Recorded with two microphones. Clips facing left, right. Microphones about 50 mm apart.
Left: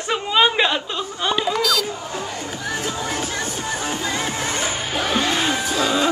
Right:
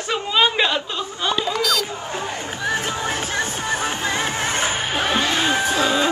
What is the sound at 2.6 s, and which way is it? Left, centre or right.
Music, right.